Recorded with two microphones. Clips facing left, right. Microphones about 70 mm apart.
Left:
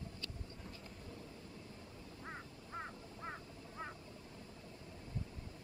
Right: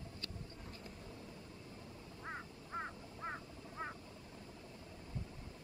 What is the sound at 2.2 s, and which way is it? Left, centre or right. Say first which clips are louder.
Quack: right 3 dB; right.